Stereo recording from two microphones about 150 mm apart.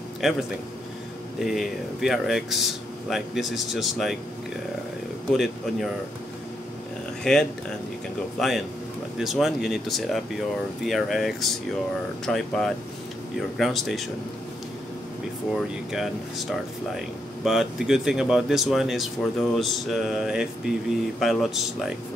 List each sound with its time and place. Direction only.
0.2 s speech: centre (ahead or behind)
1.4 s speech: centre (ahead or behind)
5.3 s speech: centre (ahead or behind)
7.3 s speech: 5° left (ahead or behind)
15.5 s speech: centre (ahead or behind)